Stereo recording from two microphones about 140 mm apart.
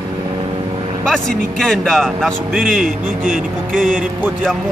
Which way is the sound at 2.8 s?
75° right (ahead or behind).